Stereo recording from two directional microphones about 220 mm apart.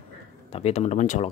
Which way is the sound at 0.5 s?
30° left (ahead or behind).